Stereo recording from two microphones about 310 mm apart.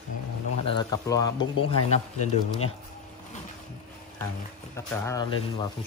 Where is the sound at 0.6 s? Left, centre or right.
Centre.